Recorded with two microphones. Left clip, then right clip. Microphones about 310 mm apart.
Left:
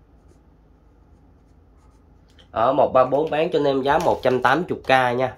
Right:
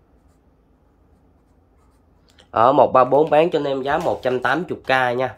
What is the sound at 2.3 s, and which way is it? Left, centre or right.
Speech, centre.